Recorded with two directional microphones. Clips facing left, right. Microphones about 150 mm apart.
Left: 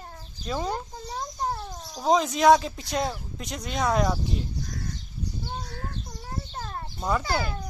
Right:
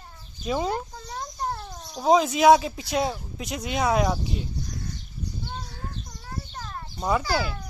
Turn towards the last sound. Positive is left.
turn(degrees=20)  # may be behind; listen again after turning